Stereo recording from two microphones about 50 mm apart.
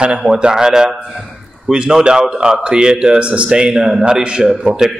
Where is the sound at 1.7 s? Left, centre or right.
Centre.